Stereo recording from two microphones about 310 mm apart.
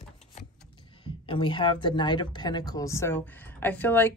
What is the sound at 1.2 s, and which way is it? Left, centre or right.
Speech, centre.